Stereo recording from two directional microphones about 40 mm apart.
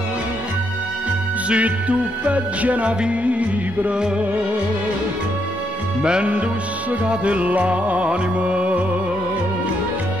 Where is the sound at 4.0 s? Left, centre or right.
Right.